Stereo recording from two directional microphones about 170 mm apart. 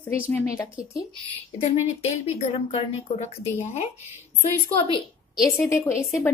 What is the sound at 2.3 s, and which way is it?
Speech, 40° left (ahead or behind).